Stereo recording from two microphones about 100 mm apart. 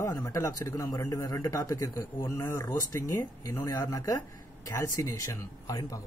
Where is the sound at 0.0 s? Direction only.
35° left (ahead or behind).